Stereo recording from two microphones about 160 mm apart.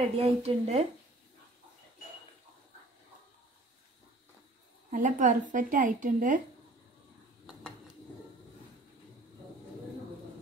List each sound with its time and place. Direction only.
0.2 s speech: 40° right (ahead or behind)
4.9 s a woman's voice: 55° right (ahead or behind)